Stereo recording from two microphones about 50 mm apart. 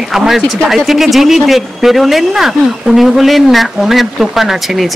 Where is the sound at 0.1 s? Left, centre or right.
Centre.